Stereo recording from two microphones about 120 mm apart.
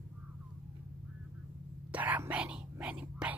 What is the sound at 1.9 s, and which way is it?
Whispering, 15° right (ahead or behind).